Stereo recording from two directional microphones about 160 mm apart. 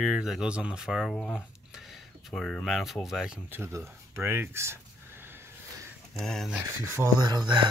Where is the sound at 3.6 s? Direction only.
15° right (ahead or behind).